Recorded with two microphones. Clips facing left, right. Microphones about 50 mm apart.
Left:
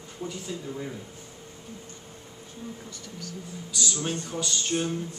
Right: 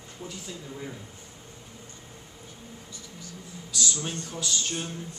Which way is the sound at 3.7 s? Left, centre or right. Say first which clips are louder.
Right 1 dB; centre.